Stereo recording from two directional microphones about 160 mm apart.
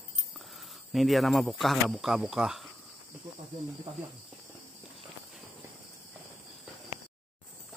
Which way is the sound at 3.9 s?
40° right (ahead or behind).